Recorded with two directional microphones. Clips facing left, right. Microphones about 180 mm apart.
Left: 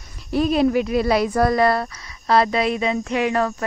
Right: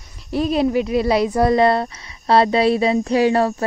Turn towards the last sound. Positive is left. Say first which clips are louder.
# right 5 dB
turn(degrees=-30)  # may be behind; listen again after turning